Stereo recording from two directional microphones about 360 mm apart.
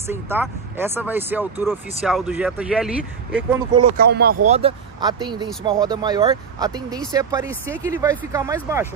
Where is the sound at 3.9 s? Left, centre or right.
Right; by 8.8 s centre.